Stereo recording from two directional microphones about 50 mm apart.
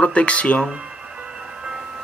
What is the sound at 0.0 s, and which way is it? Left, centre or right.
Speech, left.